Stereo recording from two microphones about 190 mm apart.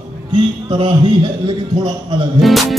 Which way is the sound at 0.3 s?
25° right (ahead or behind).